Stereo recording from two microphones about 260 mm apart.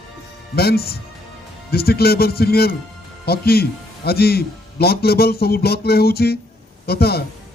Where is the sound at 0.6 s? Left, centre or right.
Left.